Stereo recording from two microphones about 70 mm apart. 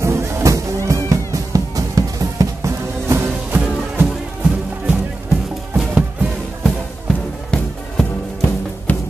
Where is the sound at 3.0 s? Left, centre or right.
Right.